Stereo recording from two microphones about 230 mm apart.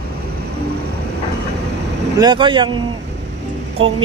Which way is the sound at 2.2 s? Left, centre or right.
Centre.